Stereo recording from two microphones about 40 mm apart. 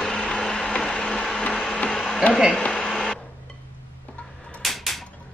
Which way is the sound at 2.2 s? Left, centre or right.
Left.